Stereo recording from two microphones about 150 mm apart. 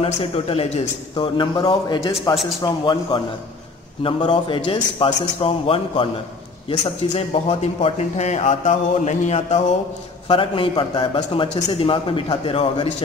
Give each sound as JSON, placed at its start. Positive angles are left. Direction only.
{"t": 0.0, "sound": "a man's voice", "side_deg": 40}
{"t": 7.2, "sound": "speech", "side_deg": 40}
{"t": 10.2, "sound": "a man's voice", "side_deg": 35}